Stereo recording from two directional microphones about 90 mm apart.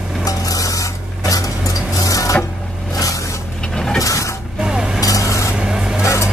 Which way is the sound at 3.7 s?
5° left (ahead or behind).